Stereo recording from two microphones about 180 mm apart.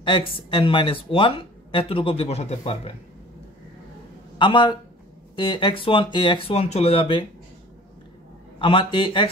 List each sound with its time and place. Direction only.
0.0 s speech: 25° left (ahead or behind)
4.4 s speech: 25° left (ahead or behind)
8.5 s speech: 30° left (ahead or behind)